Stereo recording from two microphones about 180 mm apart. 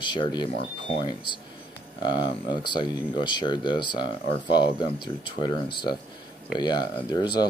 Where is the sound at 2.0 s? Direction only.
25° left (ahead or behind).